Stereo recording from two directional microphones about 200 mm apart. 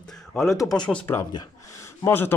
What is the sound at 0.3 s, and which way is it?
Speech, centre (ahead or behind).